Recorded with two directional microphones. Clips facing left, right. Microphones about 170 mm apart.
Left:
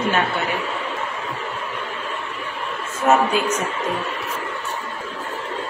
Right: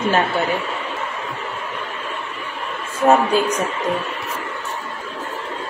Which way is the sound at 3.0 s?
30° right (ahead or behind).